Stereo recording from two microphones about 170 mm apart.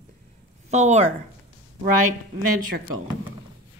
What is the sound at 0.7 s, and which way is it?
Speech, 45° right (ahead or behind).